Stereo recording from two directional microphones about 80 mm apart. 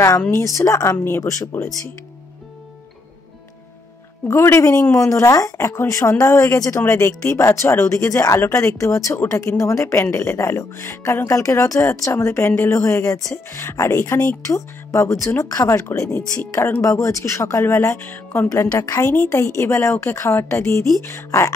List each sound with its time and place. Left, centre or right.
0.6 s speech: left
0.9 s speech: left
1.2 s speech: left
4.3 s speech: left
18.5 s speech: left